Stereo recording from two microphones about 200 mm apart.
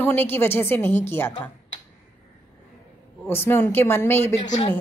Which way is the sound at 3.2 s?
10° left (ahead or behind).